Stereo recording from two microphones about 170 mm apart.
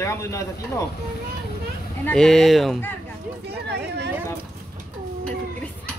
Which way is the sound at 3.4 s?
75° right (ahead or behind).